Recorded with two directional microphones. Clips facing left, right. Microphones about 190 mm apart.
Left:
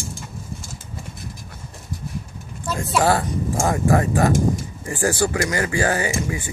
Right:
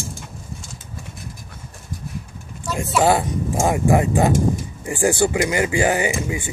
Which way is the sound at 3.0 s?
20° right (ahead or behind).